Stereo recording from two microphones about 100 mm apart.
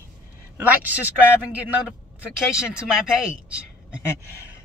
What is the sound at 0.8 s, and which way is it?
Speech, 15° right (ahead or behind).